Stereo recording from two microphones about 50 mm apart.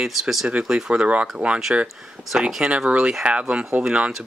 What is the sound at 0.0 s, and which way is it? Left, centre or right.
Speech, centre.